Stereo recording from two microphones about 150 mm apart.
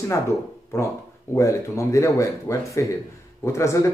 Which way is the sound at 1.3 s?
20° left (ahead or behind).